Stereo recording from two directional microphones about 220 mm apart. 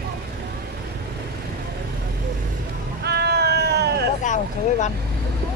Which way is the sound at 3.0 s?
45° right (ahead or behind).